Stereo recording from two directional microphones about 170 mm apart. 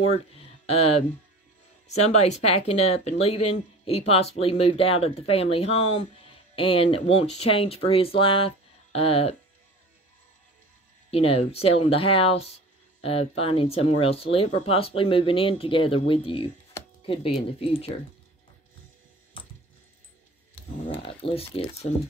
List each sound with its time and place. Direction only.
0.1 s speech: 35° left (ahead or behind)
11.1 s speech: 35° left (ahead or behind)
19.4 s coin: 30° left (ahead or behind)
20.9 s speech: 35° left (ahead or behind)